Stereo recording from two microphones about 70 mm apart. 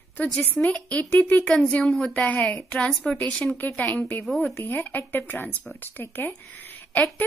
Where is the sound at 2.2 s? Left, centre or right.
Left.